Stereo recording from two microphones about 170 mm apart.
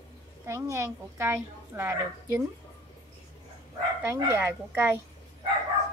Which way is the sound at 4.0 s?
15° right (ahead or behind).